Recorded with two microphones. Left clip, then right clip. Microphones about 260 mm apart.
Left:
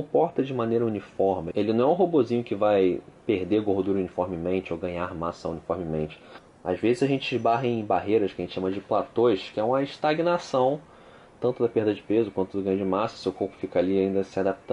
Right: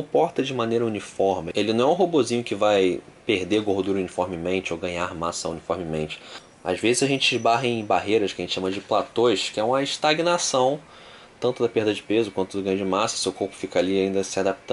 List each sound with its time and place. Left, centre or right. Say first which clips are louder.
0.2 s speech: right 2 dB; centre
1.1 s speech: right 2 dB; left
1.4 s speech: right 2 dB; centre
1.9 s speech: right 2 dB; left
2.1 s speech: right 2 dB; centre